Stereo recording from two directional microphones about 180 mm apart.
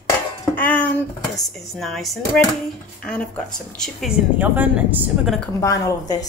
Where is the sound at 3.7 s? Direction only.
5° left (ahead or behind).